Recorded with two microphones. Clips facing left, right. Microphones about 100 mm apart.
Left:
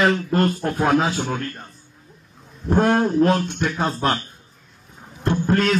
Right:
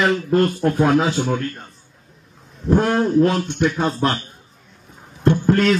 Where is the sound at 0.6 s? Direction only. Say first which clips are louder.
Right 3 dB; 30° left (ahead or behind).